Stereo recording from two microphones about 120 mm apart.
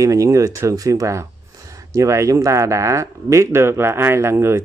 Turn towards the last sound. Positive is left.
turn(degrees=-20)  # may be behind; listen again after turning